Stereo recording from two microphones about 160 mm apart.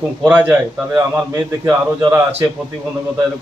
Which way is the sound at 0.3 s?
10° right (ahead or behind).